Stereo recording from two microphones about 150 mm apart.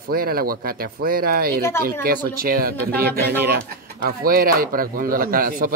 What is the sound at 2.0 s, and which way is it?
Speech, 75° right (ahead or behind).